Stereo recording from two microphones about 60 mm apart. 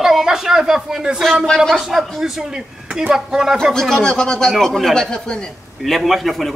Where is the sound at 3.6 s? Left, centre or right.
Centre.